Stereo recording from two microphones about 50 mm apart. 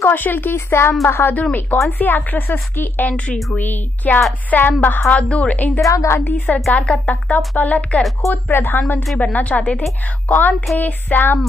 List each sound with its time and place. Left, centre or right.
0.0 s a woman's voice: left
0.6 s speech: left
1.3 s a woman's voice: left
5.1 s speech: left
5.8 s a woman's voice: left
6.2 s a woman's voice: left
6.6 s a woman's voice: centre
6.9 s a woman's voice: left
8.2 s a woman's voice: left
8.5 s speech: left
9.2 s a woman's voice: left